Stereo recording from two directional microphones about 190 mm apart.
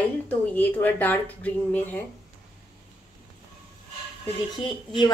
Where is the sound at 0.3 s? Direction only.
10° left (ahead or behind).